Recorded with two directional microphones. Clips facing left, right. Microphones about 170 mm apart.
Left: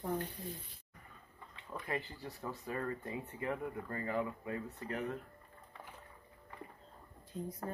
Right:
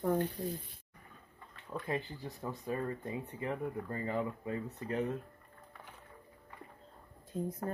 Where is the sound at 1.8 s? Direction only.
20° right (ahead or behind).